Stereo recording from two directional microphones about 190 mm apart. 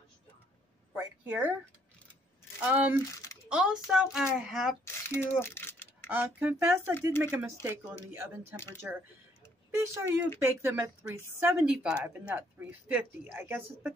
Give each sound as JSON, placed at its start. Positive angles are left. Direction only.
{"t": 0.9, "sound": "speech", "side_deg": -10}
{"t": 2.6, "sound": "speech", "side_deg": -10}
{"t": 3.1, "sound": "a sound", "side_deg": 15}
{"t": 3.4, "sound": "a child's voice", "side_deg": -5}
{"t": 4.8, "sound": "a sound", "side_deg": 10}
{"t": 6.0, "sound": "speech", "side_deg": -10}
{"t": 9.7, "sound": "speech", "side_deg": -15}